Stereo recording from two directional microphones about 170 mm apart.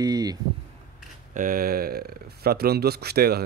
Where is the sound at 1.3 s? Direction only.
55° right (ahead or behind).